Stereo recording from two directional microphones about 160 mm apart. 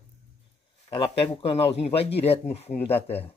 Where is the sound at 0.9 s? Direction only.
35° left (ahead or behind).